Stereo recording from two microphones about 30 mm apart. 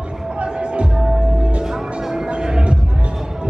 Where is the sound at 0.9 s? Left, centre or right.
Centre.